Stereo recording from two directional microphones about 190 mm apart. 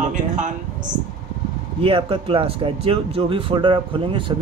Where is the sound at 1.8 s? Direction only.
30° right (ahead or behind).